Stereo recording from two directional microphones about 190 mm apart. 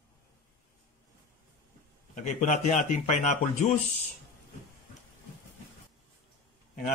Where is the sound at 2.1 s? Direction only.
40° left (ahead or behind).